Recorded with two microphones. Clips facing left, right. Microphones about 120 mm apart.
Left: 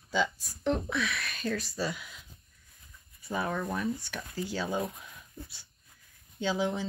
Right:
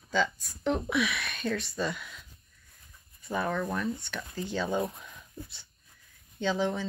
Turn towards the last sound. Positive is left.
turn(degrees=0)  # may be behind; listen again after turning